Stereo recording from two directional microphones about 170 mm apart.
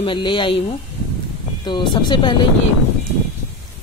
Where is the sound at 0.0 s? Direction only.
30° left (ahead or behind).